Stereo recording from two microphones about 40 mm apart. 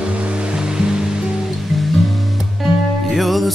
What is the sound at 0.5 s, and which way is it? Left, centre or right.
Music, centre.